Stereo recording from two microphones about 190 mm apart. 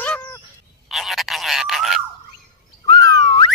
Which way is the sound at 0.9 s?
Centre (ahead or behind).